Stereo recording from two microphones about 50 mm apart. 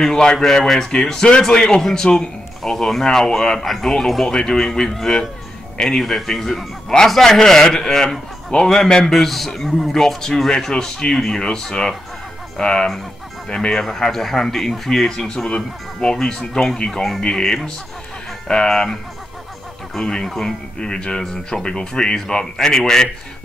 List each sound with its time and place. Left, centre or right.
0.0 s a man's voice: centre
1.8 s a man's voice: centre
20.0 s a man's voice: centre